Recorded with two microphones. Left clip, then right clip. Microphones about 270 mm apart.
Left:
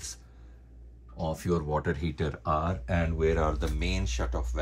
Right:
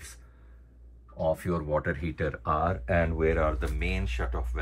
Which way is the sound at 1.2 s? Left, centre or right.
Centre.